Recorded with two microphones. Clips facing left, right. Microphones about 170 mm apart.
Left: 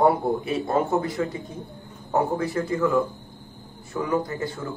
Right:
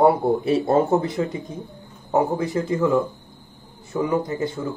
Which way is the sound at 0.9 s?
20° right (ahead or behind).